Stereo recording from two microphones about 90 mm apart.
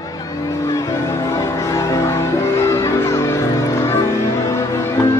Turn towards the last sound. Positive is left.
turn(degrees=30)  # may be behind; listen again after turning